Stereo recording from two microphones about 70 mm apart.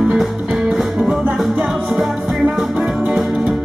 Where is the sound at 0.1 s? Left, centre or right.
Centre.